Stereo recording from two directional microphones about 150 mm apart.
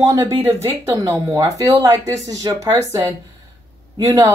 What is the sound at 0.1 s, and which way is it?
Speech, 20° right (ahead or behind).